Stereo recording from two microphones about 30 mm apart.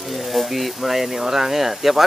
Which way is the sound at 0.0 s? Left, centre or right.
Centre.